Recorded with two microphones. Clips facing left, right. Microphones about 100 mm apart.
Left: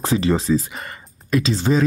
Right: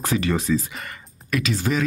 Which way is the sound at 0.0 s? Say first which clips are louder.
Left 4 dB; 25° left (ahead or behind).